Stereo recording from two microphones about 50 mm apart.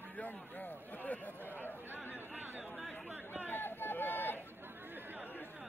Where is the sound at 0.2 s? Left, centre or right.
Left.